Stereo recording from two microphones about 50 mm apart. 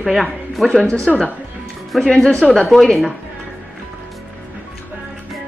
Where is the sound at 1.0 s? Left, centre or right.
Centre.